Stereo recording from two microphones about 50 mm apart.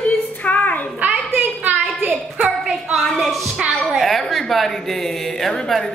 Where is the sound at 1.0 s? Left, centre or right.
Right.